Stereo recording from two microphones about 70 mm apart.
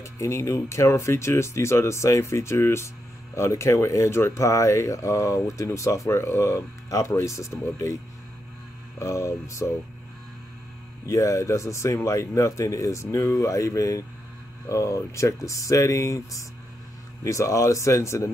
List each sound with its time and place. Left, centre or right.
0.0 s speech: left
9.0 s speech: left
11.1 s speech: left